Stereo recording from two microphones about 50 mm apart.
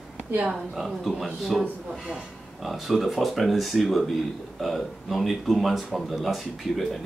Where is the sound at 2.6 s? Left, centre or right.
Centre.